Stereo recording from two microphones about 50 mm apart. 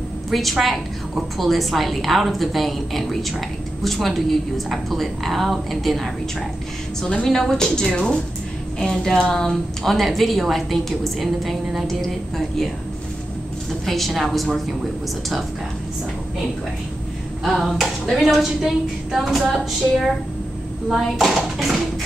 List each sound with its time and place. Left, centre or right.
0.3 s a woman's voice: centre
7.0 s a woman's voice: centre
7.2 s a woman's voice: centre
13.8 s a woman's voice: centre
17.4 s a woman's voice: centre